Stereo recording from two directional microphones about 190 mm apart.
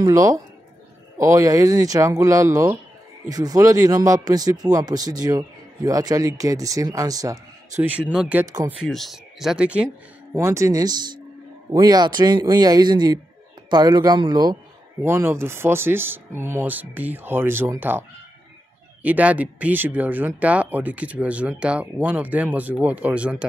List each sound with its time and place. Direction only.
0.0 s a man's voice: 20° right (ahead or behind)
8.1 s a man's voice: 5° right (ahead or behind)
19.0 s speech: 10° right (ahead or behind)